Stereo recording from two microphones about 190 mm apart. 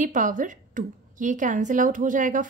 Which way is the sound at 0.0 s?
45° right (ahead or behind).